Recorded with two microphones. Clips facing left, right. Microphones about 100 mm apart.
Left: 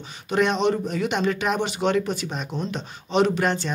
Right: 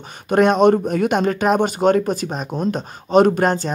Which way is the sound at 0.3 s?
50° right (ahead or behind).